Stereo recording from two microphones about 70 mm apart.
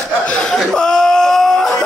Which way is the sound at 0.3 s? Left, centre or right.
Centre.